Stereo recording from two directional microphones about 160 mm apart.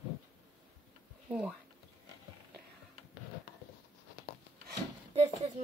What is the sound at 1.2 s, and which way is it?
Speech, 10° right (ahead or behind).